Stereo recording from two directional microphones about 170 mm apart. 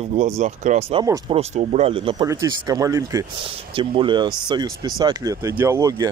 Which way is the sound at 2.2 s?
20° right (ahead or behind).